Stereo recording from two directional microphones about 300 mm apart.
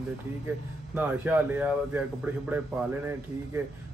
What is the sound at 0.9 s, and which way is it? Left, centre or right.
Speech, centre.